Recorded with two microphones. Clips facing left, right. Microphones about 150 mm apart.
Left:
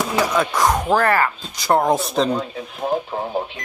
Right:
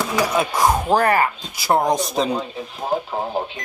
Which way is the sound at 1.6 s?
5° right (ahead or behind).